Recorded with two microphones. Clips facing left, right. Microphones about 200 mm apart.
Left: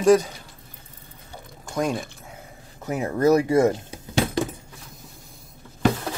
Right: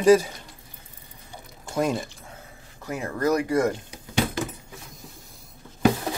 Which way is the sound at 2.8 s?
20° left (ahead or behind).